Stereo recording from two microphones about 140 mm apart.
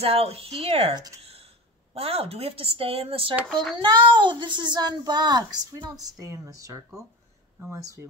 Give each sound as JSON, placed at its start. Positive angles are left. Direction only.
{"t": 0.0, "sound": "speech", "side_deg": -45}
{"t": 1.2, "sound": "a sound", "side_deg": -45}
{"t": 2.0, "sound": "speech", "side_deg": -45}